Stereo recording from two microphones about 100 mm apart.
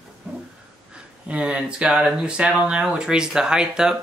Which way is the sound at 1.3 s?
10° right (ahead or behind).